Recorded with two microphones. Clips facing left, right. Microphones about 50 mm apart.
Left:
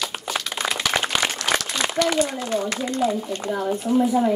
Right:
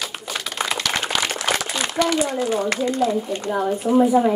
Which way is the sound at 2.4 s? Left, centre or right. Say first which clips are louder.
Right 3 dB; centre.